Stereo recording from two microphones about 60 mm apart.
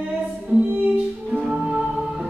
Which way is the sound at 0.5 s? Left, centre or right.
Right.